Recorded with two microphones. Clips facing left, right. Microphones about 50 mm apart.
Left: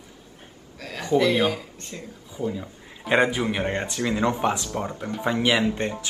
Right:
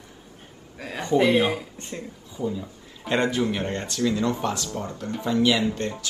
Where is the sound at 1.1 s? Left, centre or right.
Right.